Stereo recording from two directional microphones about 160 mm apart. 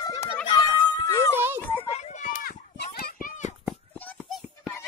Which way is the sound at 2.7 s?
75° left (ahead or behind).